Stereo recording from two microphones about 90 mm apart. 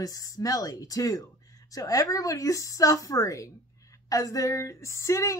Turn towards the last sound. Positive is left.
turn(degrees=35)  # may be behind; listen again after turning